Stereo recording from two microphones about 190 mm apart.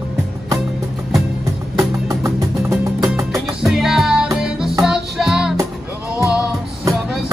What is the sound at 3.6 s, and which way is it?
Music, centre (ahead or behind).